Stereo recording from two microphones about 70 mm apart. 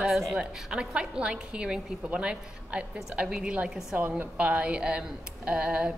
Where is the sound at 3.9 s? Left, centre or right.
Right.